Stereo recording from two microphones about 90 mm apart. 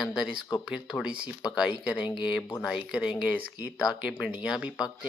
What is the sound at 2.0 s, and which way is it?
Speech, 60° left (ahead or behind).